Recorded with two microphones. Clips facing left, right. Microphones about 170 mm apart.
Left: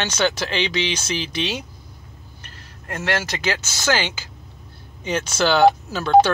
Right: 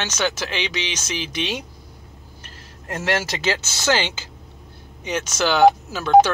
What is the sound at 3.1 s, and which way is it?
Speech, 10° right (ahead or behind).